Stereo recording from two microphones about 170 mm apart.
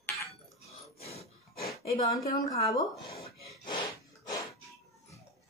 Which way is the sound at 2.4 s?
20° left (ahead or behind).